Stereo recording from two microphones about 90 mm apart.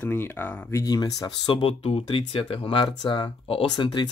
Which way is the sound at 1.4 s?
75° left (ahead or behind).